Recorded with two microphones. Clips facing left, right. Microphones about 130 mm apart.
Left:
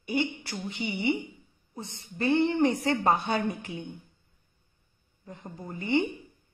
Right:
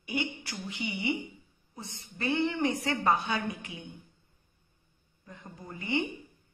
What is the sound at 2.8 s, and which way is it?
Speech, 30° left (ahead or behind).